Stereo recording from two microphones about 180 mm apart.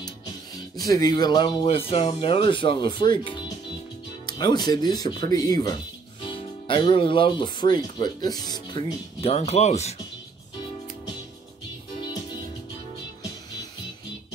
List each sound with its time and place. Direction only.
0.7 s speech: 20° left (ahead or behind); by 9.9 s 40° left (ahead or behind)